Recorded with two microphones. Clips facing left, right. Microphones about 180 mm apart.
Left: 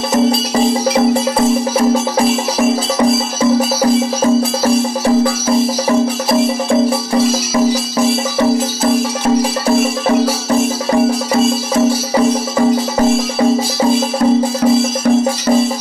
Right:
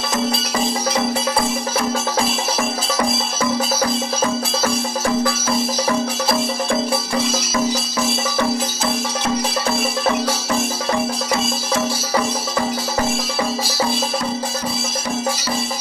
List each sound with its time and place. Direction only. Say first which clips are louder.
0.1 s music: left 9 dB; 30° left (ahead or behind)
4.2 s music: left 8 dB; 35° left (ahead or behind)